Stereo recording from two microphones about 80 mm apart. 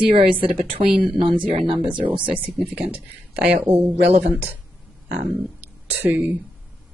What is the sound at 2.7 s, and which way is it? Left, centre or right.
Speech, centre.